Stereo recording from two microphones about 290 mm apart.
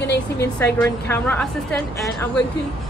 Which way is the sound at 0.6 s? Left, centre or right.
Centre.